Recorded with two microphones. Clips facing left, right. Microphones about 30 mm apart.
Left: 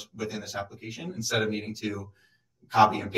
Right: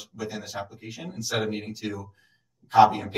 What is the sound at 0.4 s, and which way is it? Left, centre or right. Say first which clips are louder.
A man's voice: even; centre.